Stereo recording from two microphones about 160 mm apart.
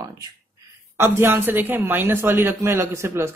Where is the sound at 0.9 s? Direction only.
15° right (ahead or behind).